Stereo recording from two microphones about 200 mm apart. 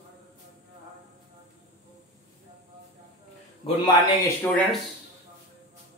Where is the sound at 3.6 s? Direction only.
25° left (ahead or behind).